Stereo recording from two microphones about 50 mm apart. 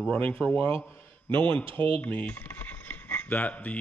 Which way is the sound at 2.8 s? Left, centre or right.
Left.